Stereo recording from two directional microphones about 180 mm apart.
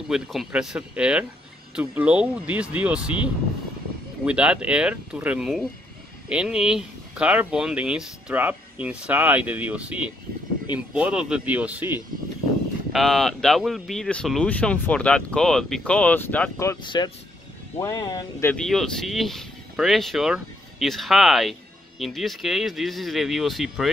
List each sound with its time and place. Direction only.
0.1 s speech: centre (ahead or behind)
4.2 s speech: 5° right (ahead or behind)
12.9 s speech: centre (ahead or behind); by 18.5 s 20° left (ahead or behind)
18.5 s speech: centre (ahead or behind)